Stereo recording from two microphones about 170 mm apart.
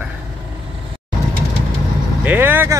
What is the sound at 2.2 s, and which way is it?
Speech, 10° right (ahead or behind).